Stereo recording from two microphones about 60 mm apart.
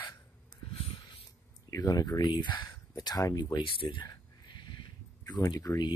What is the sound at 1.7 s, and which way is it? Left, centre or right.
Speech, left.